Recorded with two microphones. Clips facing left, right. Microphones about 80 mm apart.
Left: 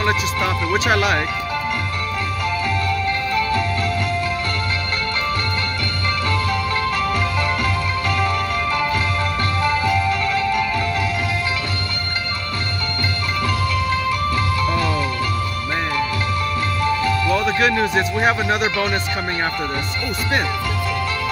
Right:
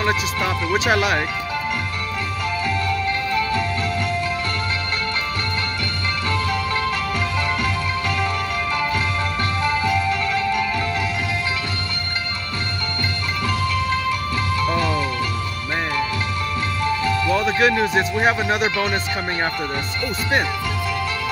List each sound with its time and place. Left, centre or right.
0.0 s speech: centre
2.9 s music: right
6.3 s music: right
9.8 s music: right
13.5 s music: right
16.8 s speech: right